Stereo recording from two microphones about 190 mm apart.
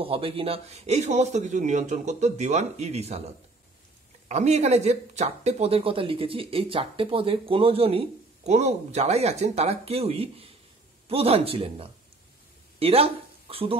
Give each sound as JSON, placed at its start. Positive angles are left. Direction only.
{"t": 0.0, "sound": "speech", "side_deg": -30}
{"t": 4.3, "sound": "speech", "side_deg": -35}